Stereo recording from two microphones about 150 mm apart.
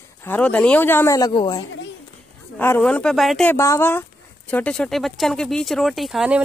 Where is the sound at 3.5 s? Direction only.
15° left (ahead or behind).